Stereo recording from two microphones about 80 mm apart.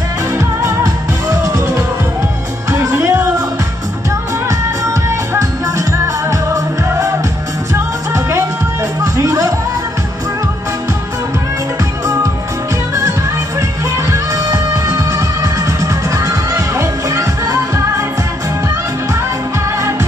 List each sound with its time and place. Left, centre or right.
2.7 s music: right
5.3 s music: right
9.0 s music: right
14.1 s music: right